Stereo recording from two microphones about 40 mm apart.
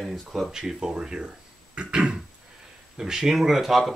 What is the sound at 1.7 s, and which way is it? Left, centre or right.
Beatboxing, right.